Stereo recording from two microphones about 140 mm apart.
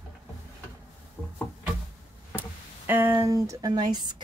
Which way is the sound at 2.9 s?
20° right (ahead or behind).